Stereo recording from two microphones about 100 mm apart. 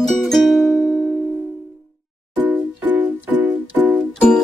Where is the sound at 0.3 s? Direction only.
Centre (ahead or behind).